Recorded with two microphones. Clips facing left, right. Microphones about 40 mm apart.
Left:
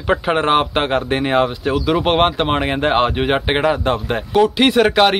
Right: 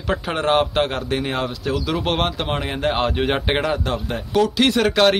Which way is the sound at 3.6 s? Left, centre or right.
Left.